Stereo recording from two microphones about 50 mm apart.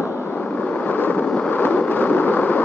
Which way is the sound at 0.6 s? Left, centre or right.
Left.